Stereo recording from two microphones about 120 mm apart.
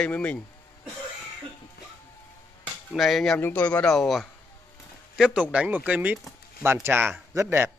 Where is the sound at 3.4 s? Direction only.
15° left (ahead or behind); by 7.7 s 20° right (ahead or behind).